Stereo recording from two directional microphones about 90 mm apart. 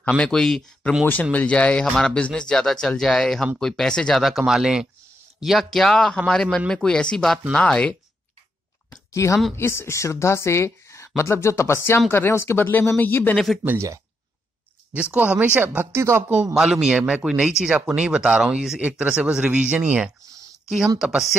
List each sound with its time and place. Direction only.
0.2 s speech: 5° left (ahead or behind)
8.9 s a sound: 35° left (ahead or behind)
9.6 s speech: 30° left (ahead or behind)
15.0 s speech: 15° right (ahead or behind)
16.5 s speech: 5° right (ahead or behind)
20.6 s speech: 5° right (ahead or behind)